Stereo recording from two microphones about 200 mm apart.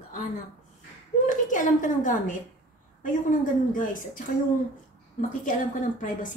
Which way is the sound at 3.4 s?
40° left (ahead or behind).